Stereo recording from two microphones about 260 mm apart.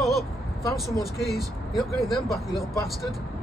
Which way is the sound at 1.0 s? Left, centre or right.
Centre.